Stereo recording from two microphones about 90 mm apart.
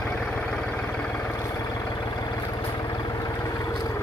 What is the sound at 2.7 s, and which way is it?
Vehicle, 55° left (ahead or behind).